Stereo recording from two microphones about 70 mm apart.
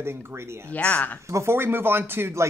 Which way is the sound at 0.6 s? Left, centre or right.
Centre.